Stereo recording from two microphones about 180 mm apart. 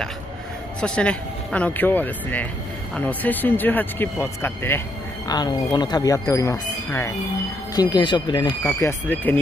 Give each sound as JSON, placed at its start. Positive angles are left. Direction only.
{"t": 0.7, "sound": "speech", "side_deg": 5}
{"t": 5.3, "sound": "speech", "side_deg": 25}
{"t": 8.7, "sound": "speech", "side_deg": 10}